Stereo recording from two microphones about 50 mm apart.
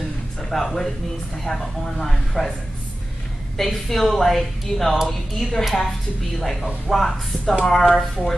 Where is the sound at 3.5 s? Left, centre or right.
Centre.